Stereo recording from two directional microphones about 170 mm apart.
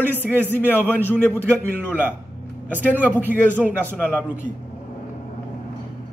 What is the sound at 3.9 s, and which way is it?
Speech, 10° left (ahead or behind).